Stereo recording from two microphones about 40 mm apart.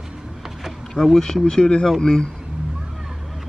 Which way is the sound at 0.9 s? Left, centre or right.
Centre.